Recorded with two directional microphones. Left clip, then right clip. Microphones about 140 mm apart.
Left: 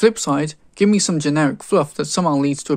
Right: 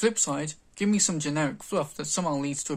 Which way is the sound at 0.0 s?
50° left (ahead or behind).